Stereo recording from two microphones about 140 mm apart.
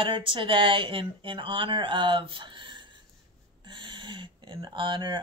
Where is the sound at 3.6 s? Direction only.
35° right (ahead or behind).